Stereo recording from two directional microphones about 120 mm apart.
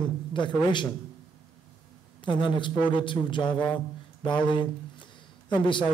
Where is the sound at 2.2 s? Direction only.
40° left (ahead or behind).